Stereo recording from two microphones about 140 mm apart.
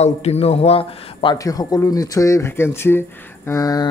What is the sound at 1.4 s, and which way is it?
Speech, 25° left (ahead or behind).